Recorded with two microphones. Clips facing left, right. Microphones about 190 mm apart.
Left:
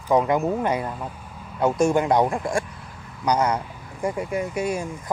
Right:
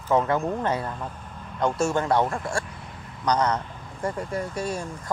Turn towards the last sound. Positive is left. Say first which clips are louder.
# left 4 dB
turn(degrees=10)  # may be behind; listen again after turning